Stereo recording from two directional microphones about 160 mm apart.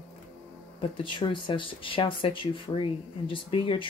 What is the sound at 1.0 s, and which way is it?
Speech, 30° left (ahead or behind).